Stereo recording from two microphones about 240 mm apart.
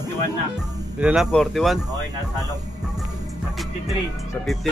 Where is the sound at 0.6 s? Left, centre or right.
Centre.